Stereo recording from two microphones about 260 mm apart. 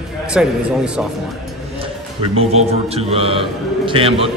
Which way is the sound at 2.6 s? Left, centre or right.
Right.